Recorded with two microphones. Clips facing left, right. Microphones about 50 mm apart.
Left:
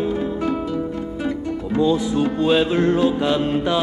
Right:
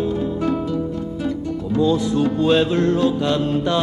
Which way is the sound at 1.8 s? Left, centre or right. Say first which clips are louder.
Even; centre.